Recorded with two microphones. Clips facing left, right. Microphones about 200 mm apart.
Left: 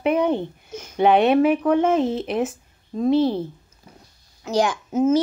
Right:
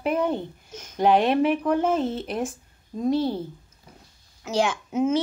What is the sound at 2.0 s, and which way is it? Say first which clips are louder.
Speech: left 5 dB; 10° left (ahead or behind).